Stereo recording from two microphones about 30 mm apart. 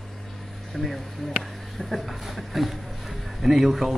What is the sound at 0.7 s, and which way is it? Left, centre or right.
A man's voice, centre.